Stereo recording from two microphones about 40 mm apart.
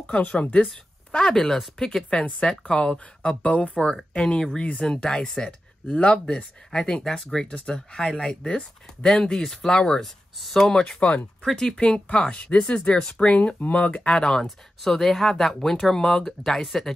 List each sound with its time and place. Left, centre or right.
0.2 s speech: left
0.7 s speech: centre
1.8 s speech: centre
3.8 s speech: left
7.4 s speech: left
9.5 s speech: centre
9.8 s speech: centre
11.0 s speech: left
14.1 s speech: centre
14.4 s speech: centre
16.4 s speech: centre